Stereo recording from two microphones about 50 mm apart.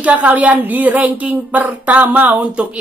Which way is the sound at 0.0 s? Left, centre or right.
Right.